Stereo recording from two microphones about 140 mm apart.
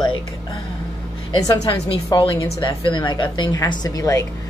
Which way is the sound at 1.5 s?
30° left (ahead or behind).